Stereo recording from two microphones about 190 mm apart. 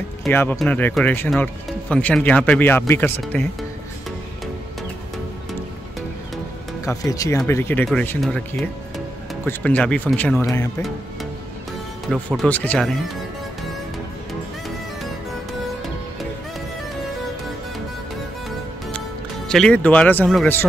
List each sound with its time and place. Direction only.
0.3 s speech: 10° left (ahead or behind)
6.9 s speech: 15° left (ahead or behind)
12.1 s speech: 5° left (ahead or behind)
18.9 s speech: 5° left (ahead or behind)